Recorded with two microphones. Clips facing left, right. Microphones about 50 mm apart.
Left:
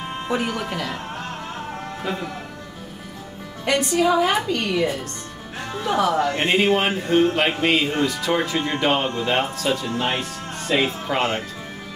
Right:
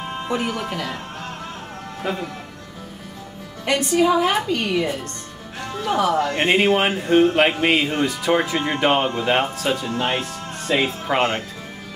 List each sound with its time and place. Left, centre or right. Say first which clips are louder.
0.3 s a woman's voice: even; centre
2.0 s a woman's voice: right 2 dB; centre
3.6 s a woman's voice: right 1 dB; centre
9.8 s a woman's voice: right 1 dB; centre
11.1 s speech: right 4 dB; centre